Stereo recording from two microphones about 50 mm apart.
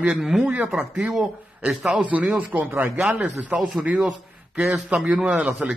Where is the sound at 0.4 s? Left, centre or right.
Right; by 2.0 s centre.